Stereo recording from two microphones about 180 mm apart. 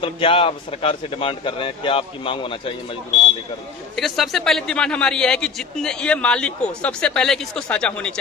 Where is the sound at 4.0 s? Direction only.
Centre (ahead or behind).